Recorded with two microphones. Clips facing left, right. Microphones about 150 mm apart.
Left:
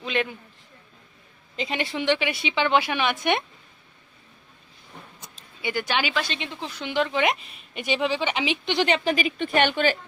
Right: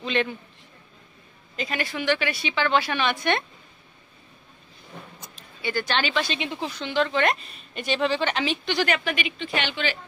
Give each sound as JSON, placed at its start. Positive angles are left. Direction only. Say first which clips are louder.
{"t": 0.0, "sound": "a man's voice", "louder": "right 1 dB", "side_deg": 5}
{"t": 1.6, "sound": "a woman's voice", "louder": "left 1 dB", "side_deg": 25}
{"t": 5.6, "sound": "a woman's voice", "louder": "even", "side_deg": 15}
{"t": 6.2, "sound": "a woman's voice", "louder": "right 4 dB", "side_deg": -10}
{"t": 6.8, "sound": "a woman's voice", "louder": "even", "side_deg": 15}
{"t": 9.4, "sound": "a woman's voice", "louder": "left 6 dB", "side_deg": 50}